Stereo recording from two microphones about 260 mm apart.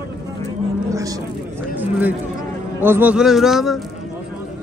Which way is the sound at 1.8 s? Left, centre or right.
Centre.